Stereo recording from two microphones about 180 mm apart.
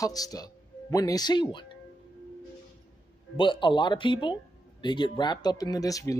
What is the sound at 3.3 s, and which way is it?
Speech, 25° left (ahead or behind).